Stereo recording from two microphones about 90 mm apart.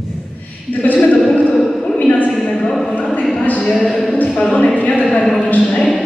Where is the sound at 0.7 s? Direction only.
15° left (ahead or behind).